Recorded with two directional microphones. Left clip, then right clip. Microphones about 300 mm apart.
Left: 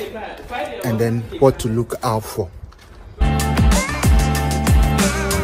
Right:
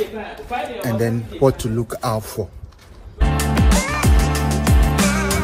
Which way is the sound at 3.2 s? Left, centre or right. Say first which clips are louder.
Even; centre.